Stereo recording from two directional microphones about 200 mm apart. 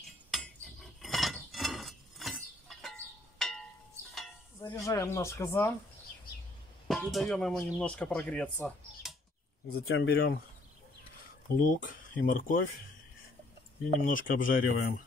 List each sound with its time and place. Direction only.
0.3 s cutlery: centre (ahead or behind)
1.0 s fowl: centre (ahead or behind)
3.3 s a sound: 5° left (ahead or behind)
4.6 s speech: 15° left (ahead or behind)
6.9 s speech: centre (ahead or behind)
9.7 s speech: 80° left; by 10.4 s 55° left (ahead or behind)
11.6 s speech: 45° left (ahead or behind)
14.0 s speech: 45° left (ahead or behind)